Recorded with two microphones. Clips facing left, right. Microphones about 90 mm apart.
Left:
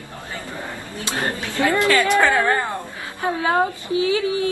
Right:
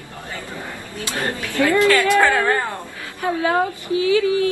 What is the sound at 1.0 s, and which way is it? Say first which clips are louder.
A woman's voice: even; 20° left (ahead or behind).